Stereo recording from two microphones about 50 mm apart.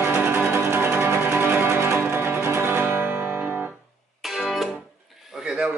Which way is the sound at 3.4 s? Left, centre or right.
Right.